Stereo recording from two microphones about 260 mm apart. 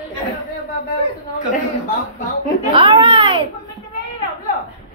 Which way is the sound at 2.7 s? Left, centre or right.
Centre.